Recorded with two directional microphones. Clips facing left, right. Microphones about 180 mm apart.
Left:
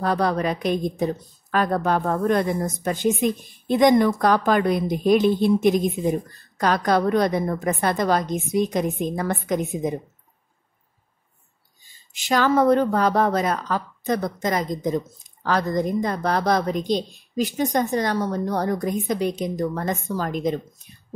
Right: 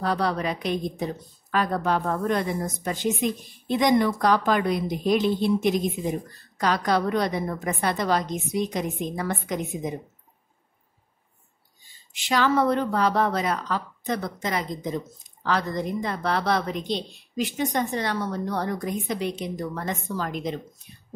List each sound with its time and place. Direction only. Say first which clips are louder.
0.0 s a woman's voice: left 3 dB; 50° left (ahead or behind)
12.1 s a woman's voice: left 3 dB; 45° left (ahead or behind)